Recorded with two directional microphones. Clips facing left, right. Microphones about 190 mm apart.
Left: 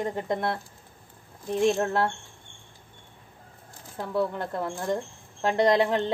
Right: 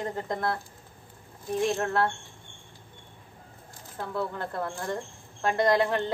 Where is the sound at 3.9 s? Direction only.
15° left (ahead or behind).